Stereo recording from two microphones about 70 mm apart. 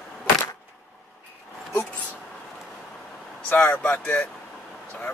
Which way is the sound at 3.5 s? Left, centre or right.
Left.